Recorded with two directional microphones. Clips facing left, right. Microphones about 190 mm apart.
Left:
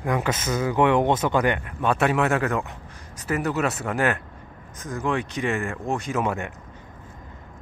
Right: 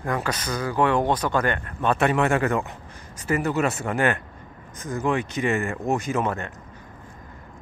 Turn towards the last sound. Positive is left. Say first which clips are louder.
# left 1 dB
turn(degrees=15)  # may be behind; listen again after turning